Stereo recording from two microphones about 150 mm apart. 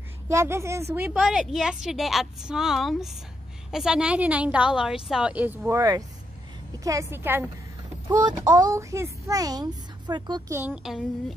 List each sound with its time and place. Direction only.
0.3 s a woman's voice: 20° right (ahead or behind)
1.1 s a woman's voice: 5° right (ahead or behind)
8.1 s a child's voice: 25° right (ahead or behind)
10.5 s a woman's voice: 15° right (ahead or behind)
10.8 s a woman's voice: centre (ahead or behind)